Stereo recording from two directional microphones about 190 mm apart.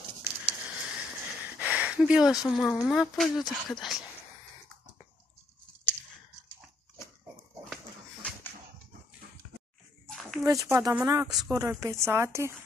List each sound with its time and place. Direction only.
0.2 s a sound: 10° right (ahead or behind)
2.8 s speech: centre (ahead or behind)
7.7 s dog: 5° left (ahead or behind)
10.0 s a sound: centre (ahead or behind)
10.4 s speech: 15° right (ahead or behind)
11.2 s speech: 5° right (ahead or behind)
11.5 s speech: 15° right (ahead or behind)